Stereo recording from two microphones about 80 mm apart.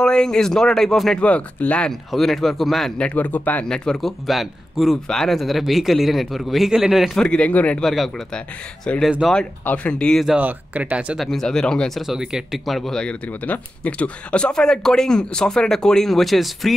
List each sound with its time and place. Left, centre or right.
0.0 s speech: centre
1.2 s speech: centre
1.9 s speech: centre
3.0 s speech: centre
3.6 s speech: centre
7.2 s speech: centre
7.8 s speech: centre
8.9 s speech: centre
9.2 s speech: centre
9.7 s speech: centre
10.4 s speech: centre
11.1 s speech: centre
12.1 s speech: centre